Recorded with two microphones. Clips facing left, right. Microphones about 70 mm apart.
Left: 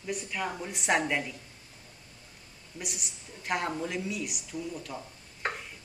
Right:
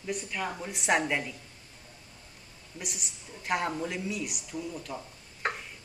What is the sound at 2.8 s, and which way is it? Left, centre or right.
A woman's voice, centre.